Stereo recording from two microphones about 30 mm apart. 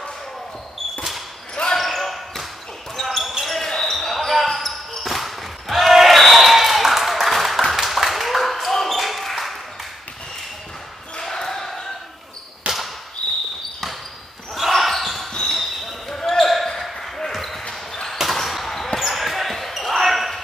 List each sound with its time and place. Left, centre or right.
1.5 s basketball bounce: left
1.8 s basketball bounce: centre
4.3 s basketball bounce: centre
7.7 s a sound: centre
8.9 s basketball bounce: centre
11.2 s basketball bounce: centre
12.7 s basketball bounce: right
13.2 s basketball bounce: left
14.8 s basketball bounce: centre
18.9 s basketball bounce: centre